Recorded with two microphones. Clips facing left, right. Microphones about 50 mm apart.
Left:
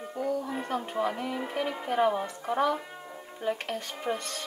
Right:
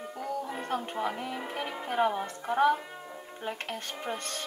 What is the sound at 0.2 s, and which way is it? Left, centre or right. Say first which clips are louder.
Music: left 4 dB; centre.